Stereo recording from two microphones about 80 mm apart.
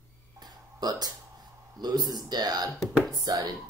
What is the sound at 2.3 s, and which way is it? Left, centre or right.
Speech, right.